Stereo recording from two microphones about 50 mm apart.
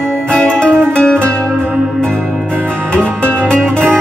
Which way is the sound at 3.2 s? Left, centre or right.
Left.